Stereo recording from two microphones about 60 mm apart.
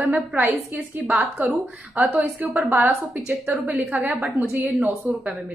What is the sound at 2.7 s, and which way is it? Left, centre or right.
A woman's voice, right.